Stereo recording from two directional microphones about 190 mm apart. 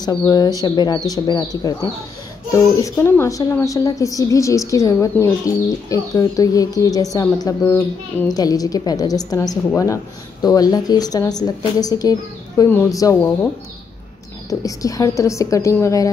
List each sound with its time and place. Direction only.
0.0 s a woman's voice: 20° left (ahead or behind)
14.5 s speech: 20° left (ahead or behind)